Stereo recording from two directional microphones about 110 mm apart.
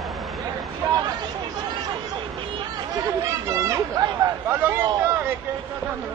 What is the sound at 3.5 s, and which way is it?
Speech, 30° right (ahead or behind).